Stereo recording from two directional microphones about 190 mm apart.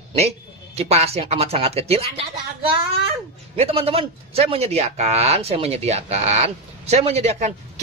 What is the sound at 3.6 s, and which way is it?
A man's voice, 30° right (ahead or behind).